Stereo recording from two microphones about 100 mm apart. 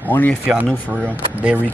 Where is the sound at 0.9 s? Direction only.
15° right (ahead or behind).